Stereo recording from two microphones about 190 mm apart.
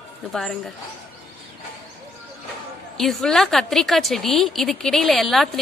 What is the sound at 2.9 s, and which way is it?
A woman's voice, centre (ahead or behind).